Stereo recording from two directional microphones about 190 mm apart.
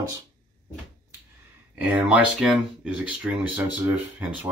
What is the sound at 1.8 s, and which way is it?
Speech, 5° right (ahead or behind).